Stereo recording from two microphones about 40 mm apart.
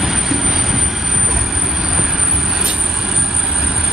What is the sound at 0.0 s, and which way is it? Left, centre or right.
Train, centre.